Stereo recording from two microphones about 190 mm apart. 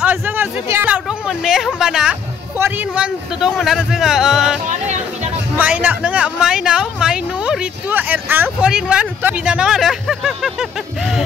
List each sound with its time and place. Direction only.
0.0 s a sound: 10° right (ahead or behind)
1.8 s speech: 5° right (ahead or behind)
4.6 s music: 35° right (ahead or behind)
5.6 s speech: 10° right (ahead or behind)